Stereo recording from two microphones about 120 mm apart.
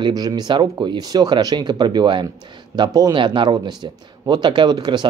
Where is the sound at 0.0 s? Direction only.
35° right (ahead or behind).